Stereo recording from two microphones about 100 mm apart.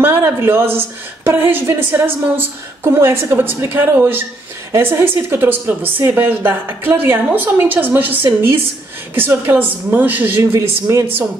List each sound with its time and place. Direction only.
0.0 s a woman's voice: 25° right (ahead or behind)
10.4 s speech: 30° right (ahead or behind)